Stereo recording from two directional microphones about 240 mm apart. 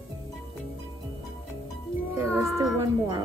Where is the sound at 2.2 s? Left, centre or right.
Centre.